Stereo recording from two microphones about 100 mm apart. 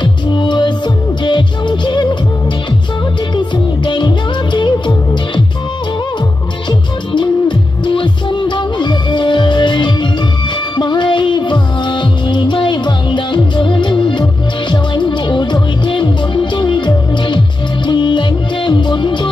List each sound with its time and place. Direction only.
0.0 s music: 50° left (ahead or behind)
3.3 s music: 50° left (ahead or behind)
7.1 s music: 50° left (ahead or behind)